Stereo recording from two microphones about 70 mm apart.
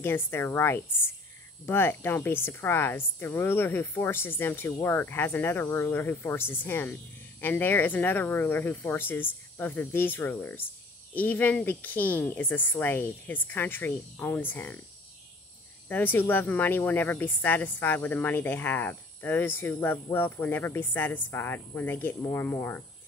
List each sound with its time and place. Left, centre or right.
0.0 s a woman's voice: left
15.9 s speech: left